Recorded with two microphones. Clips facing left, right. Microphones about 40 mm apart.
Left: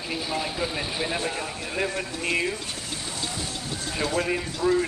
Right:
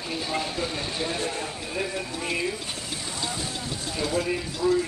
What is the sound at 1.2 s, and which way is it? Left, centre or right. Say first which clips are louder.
Speech: left 1 dB; left.